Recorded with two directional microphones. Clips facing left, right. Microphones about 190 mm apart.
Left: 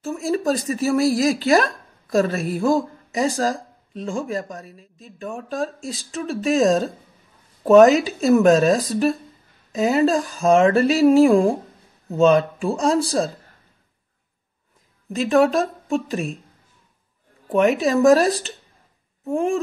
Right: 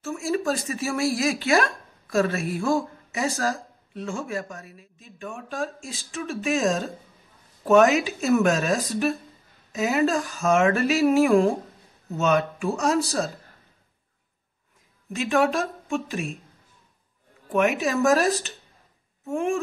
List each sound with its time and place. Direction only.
0.0 s a woman's voice: 35° left (ahead or behind)
15.1 s a woman's voice: 35° left (ahead or behind)
17.5 s a woman's voice: 35° left (ahead or behind)